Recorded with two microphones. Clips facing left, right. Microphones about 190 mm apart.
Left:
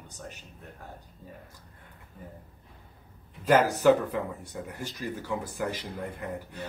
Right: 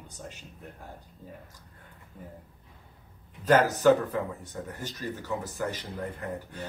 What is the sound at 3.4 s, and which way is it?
Speech, 10° left (ahead or behind).